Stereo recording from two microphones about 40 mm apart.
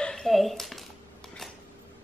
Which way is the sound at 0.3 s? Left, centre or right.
Centre.